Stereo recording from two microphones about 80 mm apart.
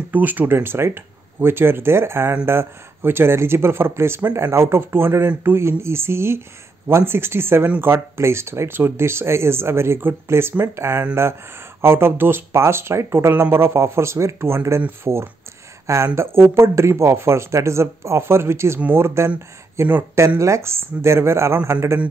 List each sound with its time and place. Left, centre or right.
0.1 s speech: right
20.3 s speech: right